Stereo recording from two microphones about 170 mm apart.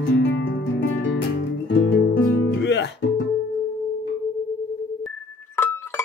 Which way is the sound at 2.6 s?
90° left.